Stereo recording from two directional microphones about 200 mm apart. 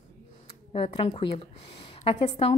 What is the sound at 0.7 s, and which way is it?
A woman's voice, 30° left (ahead or behind).